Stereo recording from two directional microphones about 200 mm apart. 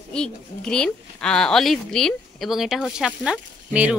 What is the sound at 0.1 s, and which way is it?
A woman's voice, 5° left (ahead or behind).